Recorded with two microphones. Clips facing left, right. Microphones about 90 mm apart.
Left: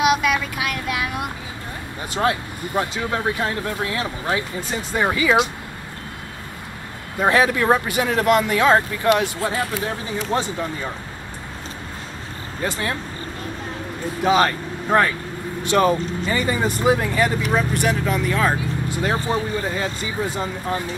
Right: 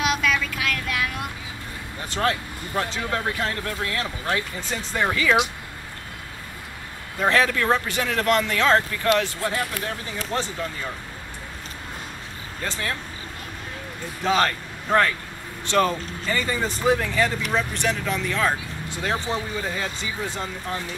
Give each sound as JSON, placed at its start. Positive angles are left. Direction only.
{"t": 0.0, "sound": "vehicle", "side_deg": 15}
{"t": 2.0, "sound": "speech", "side_deg": 15}
{"t": 7.2, "sound": "speech", "side_deg": 15}
{"t": 12.6, "sound": "speech", "side_deg": 10}
{"t": 14.2, "sound": "speech", "side_deg": 10}
{"t": 19.1, "sound": "speech", "side_deg": 45}
{"t": 19.6, "sound": "speech", "side_deg": 5}